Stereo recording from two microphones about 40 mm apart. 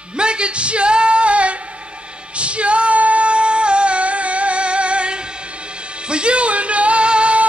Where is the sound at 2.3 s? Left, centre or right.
Right.